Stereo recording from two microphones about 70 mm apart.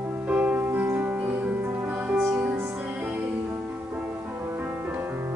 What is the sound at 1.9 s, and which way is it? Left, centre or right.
Music, centre.